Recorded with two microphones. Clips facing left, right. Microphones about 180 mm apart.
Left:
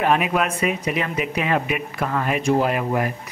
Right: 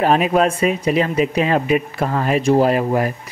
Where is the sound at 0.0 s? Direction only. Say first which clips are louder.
Right 5 dB; 35° right (ahead or behind).